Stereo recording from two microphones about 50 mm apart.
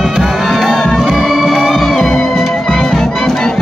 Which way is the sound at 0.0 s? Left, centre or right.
Centre.